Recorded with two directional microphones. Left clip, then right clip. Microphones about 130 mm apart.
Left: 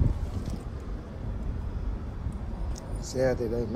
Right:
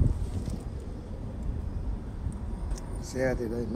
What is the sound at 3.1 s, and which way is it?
Speech, 5° left (ahead or behind).